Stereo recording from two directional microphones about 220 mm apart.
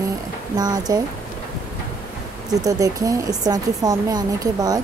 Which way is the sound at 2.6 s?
15° right (ahead or behind).